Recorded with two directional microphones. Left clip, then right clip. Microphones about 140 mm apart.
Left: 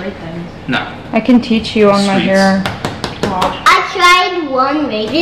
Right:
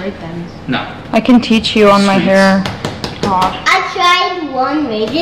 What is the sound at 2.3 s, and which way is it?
A child's voice, 10° left (ahead or behind).